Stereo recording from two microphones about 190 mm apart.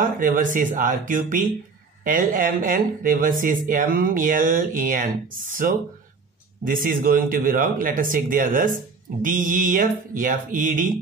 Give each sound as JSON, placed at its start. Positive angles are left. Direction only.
{"t": 0.0, "sound": "speech", "side_deg": -45}